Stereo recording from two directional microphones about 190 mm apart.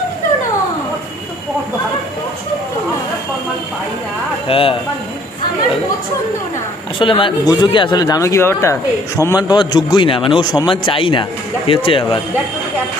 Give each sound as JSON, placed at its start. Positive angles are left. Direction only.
{"t": 4.5, "sound": "speech", "side_deg": 30}
{"t": 7.0, "sound": "speech", "side_deg": 25}